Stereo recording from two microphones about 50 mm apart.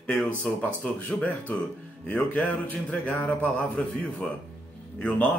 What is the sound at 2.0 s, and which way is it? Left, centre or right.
Speech, left.